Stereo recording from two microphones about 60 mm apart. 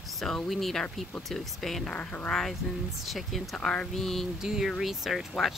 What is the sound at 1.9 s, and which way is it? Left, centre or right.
Speech, centre.